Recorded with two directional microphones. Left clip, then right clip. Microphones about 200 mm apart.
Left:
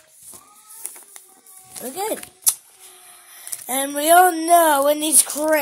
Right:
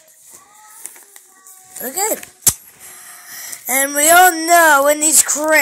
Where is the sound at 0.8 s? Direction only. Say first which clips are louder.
Right 2 dB; 20° left (ahead or behind).